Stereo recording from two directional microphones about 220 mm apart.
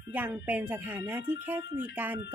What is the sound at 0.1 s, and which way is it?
Speech, 5° right (ahead or behind).